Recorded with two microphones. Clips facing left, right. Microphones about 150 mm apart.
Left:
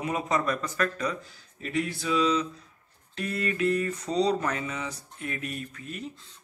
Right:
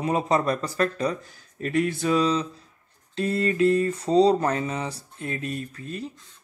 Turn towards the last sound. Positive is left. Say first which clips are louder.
# right 4 dB
turn(degrees=-35)  # may be behind; listen again after turning